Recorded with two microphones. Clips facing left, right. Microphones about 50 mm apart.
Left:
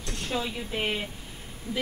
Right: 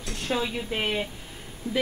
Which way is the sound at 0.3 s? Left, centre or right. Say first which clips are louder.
Right 4 dB; right.